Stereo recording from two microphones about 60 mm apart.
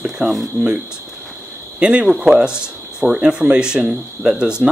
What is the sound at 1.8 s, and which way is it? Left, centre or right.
Speech, centre.